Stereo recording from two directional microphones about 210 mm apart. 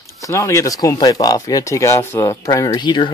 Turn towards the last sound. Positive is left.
turn(degrees=20)  # may be behind; listen again after turning